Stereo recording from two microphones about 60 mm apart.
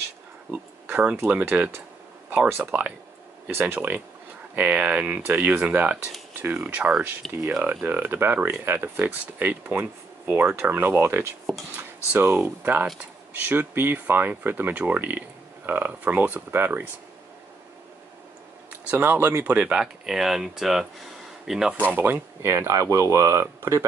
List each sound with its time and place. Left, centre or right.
1.5 s speech: right
18.7 s speech: right
19.6 s speech: centre
21.7 s speech: right
22.4 s speech: right